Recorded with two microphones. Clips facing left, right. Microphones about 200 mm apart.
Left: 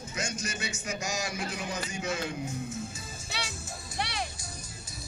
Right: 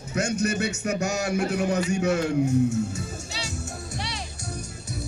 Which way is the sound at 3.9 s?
60° left (ahead or behind).